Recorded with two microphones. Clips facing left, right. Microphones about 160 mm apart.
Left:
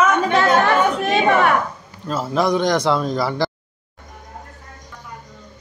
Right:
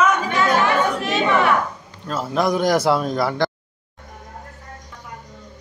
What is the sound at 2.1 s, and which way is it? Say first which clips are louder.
A man's voice: left 2 dB; centre (ahead or behind).